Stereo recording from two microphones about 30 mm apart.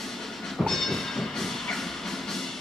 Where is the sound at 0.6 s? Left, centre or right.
Centre.